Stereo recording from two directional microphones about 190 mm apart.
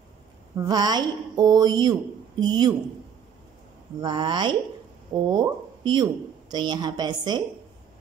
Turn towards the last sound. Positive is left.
turn(degrees=-20)  # may be behind; listen again after turning